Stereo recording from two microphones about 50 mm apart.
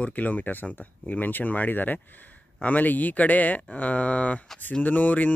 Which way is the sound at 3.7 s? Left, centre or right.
Left.